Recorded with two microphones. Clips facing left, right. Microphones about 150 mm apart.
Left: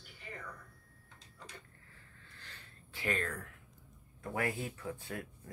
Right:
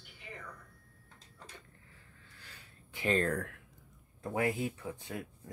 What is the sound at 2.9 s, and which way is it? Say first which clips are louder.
Speech: right 6 dB; 25° right (ahead or behind).